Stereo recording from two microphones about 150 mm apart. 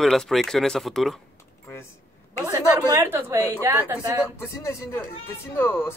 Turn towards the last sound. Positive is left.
turn(degrees=15)  # may be behind; listen again after turning